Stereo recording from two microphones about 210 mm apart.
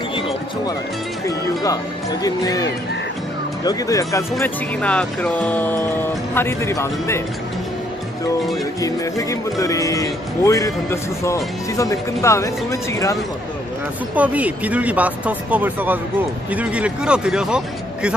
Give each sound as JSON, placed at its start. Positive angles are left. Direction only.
{"t": 1.2, "sound": "speech", "side_deg": 15}
{"t": 8.8, "sound": "speech", "side_deg": 15}
{"t": 14.1, "sound": "speech", "side_deg": -5}